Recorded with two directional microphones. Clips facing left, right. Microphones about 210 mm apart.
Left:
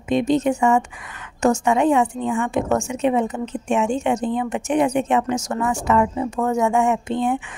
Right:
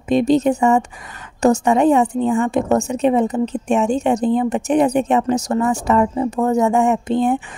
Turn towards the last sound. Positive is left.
turn(degrees=-35)  # may be behind; listen again after turning